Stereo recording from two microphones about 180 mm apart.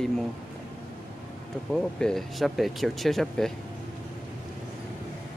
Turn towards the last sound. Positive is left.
turn(degrees=0)  # may be behind; listen again after turning